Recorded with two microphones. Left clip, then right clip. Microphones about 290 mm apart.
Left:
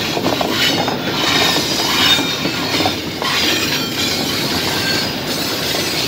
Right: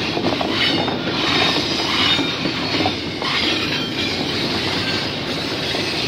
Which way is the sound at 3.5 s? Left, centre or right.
Left.